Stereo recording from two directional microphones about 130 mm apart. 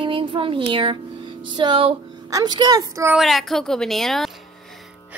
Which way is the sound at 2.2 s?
30° right (ahead or behind).